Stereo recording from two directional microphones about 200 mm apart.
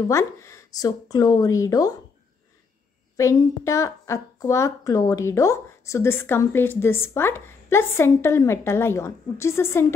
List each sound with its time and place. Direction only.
0.1 s a woman's voice: 15° left (ahead or behind)
3.2 s a woman's voice: 15° left (ahead or behind)